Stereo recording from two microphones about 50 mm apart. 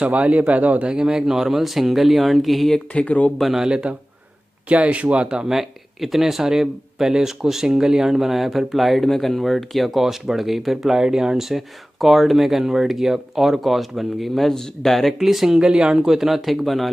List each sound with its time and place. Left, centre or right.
0.0 s speech: right
0.9 s speech: centre
2.7 s speech: left
3.3 s speech: centre
3.6 s speech: centre
4.6 s speech: right
5.5 s speech: centre